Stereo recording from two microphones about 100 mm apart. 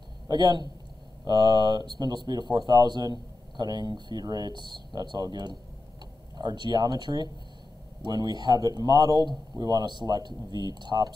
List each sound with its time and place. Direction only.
0.3 s speech: 45° right (ahead or behind)